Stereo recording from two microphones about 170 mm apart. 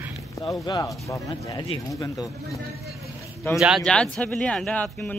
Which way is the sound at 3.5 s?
Centre (ahead or behind).